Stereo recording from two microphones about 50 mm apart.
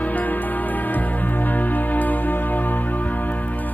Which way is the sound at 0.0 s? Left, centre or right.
Left.